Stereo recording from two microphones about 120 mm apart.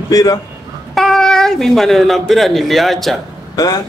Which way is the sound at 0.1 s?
30° left (ahead or behind).